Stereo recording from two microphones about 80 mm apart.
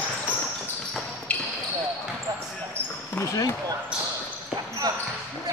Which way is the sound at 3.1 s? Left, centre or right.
Left.